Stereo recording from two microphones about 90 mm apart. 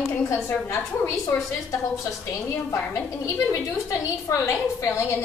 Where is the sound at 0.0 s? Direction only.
5° left (ahead or behind).